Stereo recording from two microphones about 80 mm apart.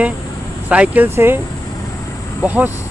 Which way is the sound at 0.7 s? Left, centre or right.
Centre.